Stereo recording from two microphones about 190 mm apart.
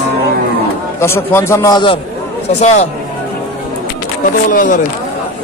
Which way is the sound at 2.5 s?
35° left (ahead or behind).